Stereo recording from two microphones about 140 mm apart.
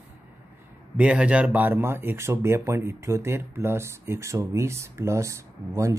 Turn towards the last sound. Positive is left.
turn(degrees=-20)  # may be behind; listen again after turning